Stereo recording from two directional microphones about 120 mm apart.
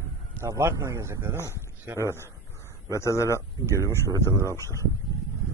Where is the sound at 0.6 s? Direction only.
20° right (ahead or behind).